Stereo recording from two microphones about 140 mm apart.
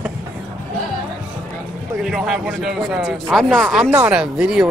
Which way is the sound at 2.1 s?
5° right (ahead or behind).